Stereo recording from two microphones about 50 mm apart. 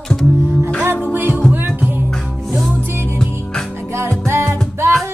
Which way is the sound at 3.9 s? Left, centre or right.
Right.